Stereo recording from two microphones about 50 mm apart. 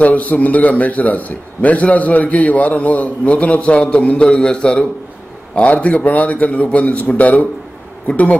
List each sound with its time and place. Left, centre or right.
0.0 s a man's voice: left